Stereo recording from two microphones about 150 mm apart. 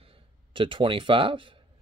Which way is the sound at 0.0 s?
35° right (ahead or behind).